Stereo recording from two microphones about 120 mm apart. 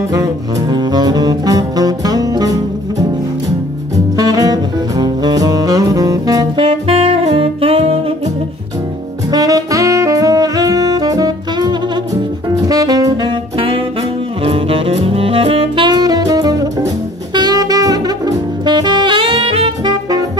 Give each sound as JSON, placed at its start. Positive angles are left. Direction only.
{"t": 0.1, "sound": "saxophone", "side_deg": -30}
{"t": 3.9, "sound": "music", "side_deg": -30}
{"t": 9.3, "sound": "saxophone", "side_deg": -30}
{"t": 19.8, "sound": "music", "side_deg": -35}